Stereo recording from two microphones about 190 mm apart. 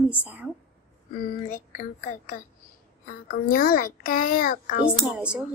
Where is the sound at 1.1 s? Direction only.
45° left (ahead or behind).